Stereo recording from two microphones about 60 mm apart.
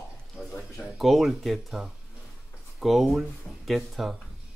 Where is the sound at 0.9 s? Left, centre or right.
Centre.